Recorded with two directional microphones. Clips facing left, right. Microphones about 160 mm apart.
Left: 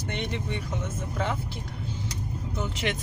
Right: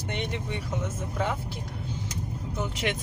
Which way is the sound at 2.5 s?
10° right (ahead or behind).